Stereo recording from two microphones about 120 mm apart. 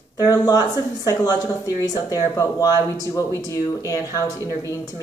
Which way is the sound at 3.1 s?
30° left (ahead or behind).